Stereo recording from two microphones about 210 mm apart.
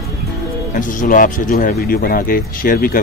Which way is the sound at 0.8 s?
40° left (ahead or behind).